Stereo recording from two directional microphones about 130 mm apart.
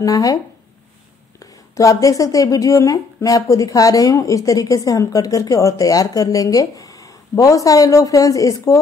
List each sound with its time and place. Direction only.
0.0 s speech: 30° left (ahead or behind)
1.4 s speech: 25° left (ahead or behind)